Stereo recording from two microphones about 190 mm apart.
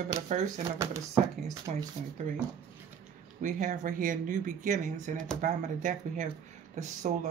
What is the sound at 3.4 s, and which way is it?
Speech, 40° right (ahead or behind).